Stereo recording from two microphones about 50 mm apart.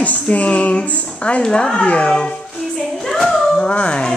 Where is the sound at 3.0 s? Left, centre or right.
Centre.